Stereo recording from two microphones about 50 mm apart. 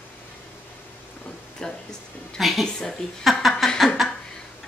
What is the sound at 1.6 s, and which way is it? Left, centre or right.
Speech, centre.